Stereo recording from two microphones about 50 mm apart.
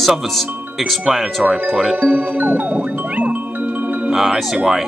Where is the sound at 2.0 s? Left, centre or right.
Right.